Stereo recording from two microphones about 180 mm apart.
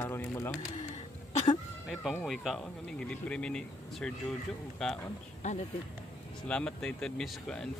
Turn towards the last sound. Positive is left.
turn(degrees=5)  # may be behind; listen again after turning